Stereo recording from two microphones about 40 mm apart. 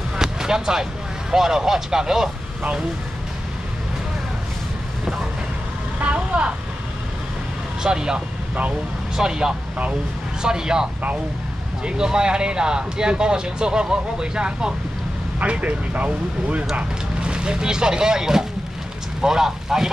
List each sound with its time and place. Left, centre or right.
0.2 s a sound: centre
1.3 s speech: centre
6.1 s speech: right
7.8 s speech: centre
15.3 s speech: right
17.2 s speech: right